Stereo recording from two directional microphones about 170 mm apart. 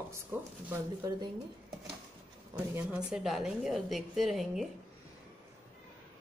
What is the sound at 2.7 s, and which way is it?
A woman's voice, 5° right (ahead or behind).